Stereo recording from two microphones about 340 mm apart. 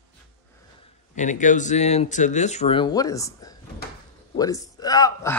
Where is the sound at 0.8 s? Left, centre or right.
Left.